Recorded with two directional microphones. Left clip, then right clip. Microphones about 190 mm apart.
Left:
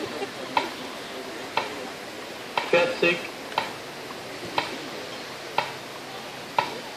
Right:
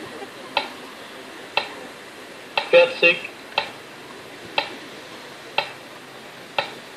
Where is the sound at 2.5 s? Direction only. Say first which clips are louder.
Right 7 dB; 35° right (ahead or behind).